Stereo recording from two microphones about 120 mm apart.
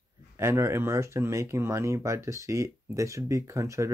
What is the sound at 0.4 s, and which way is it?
Speech, 20° right (ahead or behind).